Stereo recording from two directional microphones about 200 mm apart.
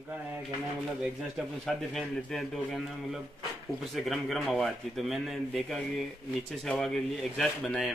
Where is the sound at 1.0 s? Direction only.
Centre (ahead or behind).